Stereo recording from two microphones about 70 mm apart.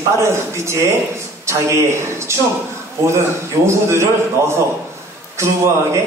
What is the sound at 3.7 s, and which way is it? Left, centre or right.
Speech, right.